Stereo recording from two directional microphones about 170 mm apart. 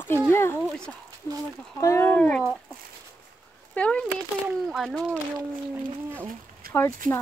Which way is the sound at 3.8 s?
5° left (ahead or behind).